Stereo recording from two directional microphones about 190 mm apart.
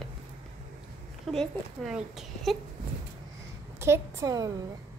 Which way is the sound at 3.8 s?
15° right (ahead or behind).